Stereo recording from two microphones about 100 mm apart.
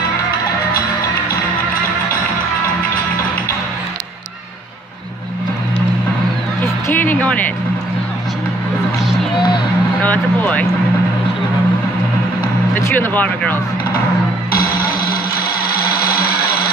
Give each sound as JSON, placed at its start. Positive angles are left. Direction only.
{"t": 6.9, "sound": "music", "side_deg": 20}
{"t": 9.9, "sound": "vehicle", "side_deg": 15}
{"t": 12.9, "sound": "speech", "side_deg": 15}